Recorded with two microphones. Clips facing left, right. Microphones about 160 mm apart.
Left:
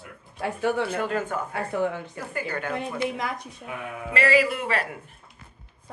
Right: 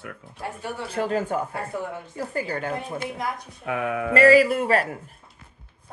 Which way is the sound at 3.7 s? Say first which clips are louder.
Right 9 dB; 70° right (ahead or behind).